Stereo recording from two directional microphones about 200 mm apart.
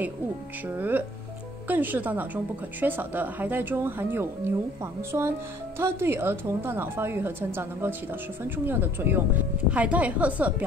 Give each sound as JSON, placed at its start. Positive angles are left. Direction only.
{"t": 0.7, "sound": "a woman's voice", "side_deg": -10}